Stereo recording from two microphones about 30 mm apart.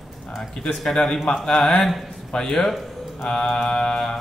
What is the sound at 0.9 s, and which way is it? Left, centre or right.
Mantra, left.